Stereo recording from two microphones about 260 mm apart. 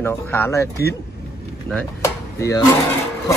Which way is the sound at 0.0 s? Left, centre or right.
Centre.